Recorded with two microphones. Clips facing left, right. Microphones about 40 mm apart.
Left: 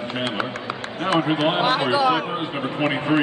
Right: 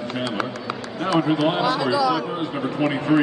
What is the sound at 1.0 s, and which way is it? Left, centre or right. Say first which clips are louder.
Speech: even; left.